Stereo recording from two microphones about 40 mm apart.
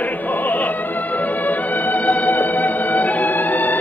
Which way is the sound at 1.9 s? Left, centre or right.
Left.